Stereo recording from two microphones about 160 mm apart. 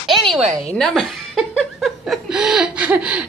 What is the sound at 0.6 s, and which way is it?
A woman's voice, 5° left (ahead or behind).